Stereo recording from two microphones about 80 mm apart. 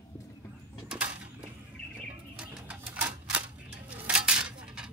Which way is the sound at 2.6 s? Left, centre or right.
Centre.